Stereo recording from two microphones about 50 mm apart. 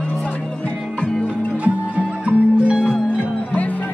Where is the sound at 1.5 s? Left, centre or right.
Right.